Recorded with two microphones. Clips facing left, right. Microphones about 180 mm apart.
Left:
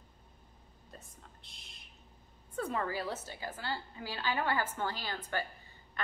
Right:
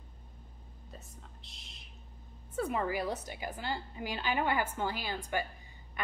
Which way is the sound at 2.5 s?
10° right (ahead or behind).